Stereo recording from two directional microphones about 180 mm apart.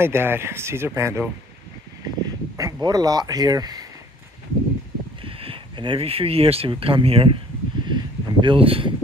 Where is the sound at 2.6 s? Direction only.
15° right (ahead or behind).